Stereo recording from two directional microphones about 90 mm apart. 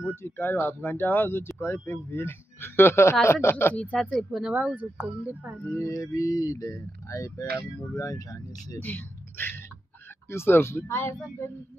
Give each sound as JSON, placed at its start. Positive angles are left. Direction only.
{"t": 0.1, "sound": "speech", "side_deg": 25}
{"t": 3.7, "sound": "speech", "side_deg": 10}
{"t": 4.1, "sound": "speech", "side_deg": 0}
{"t": 4.6, "sound": "speech", "side_deg": -15}
{"t": 5.6, "sound": "speech", "side_deg": 35}
{"t": 8.7, "sound": "speech", "side_deg": 20}